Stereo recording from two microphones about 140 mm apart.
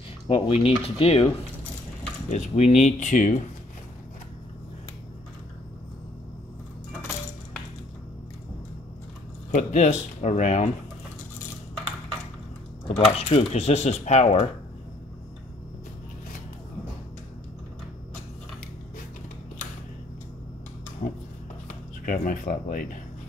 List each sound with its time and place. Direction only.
0.3 s speech: 40° left (ahead or behind)
2.2 s speech: 55° left (ahead or behind)
9.5 s speech: 60° left (ahead or behind)
12.8 s speech: 45° left (ahead or behind)
21.0 s a sound: 90° left
21.6 s speech: 70° left (ahead or behind)